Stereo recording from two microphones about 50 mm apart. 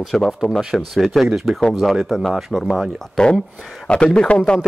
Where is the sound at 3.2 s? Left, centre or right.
Centre.